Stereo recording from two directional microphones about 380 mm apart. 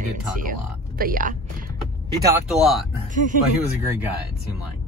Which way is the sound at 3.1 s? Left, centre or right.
Centre.